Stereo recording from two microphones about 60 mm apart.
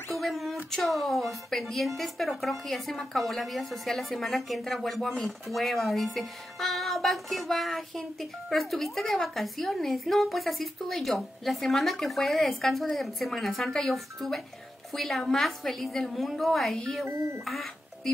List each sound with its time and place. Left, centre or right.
0.1 s a sound: centre
0.8 s a woman's voice: centre
17.0 s speech: right
17.5 s speech: centre